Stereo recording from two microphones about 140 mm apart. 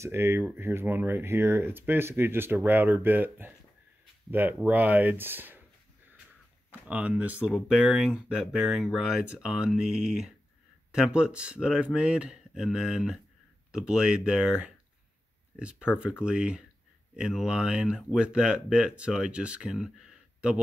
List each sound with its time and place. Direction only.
0.0 s speech: 20° right (ahead or behind)
6.7 s speech: 10° right (ahead or behind)